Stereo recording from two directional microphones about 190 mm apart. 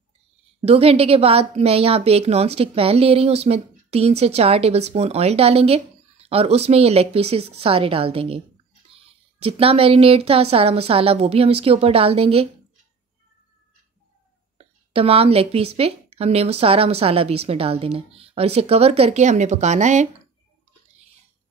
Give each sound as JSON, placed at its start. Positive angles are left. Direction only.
{"t": 0.6, "sound": "a woman's voice", "side_deg": -30}
{"t": 14.6, "sound": "a woman's voice", "side_deg": -30}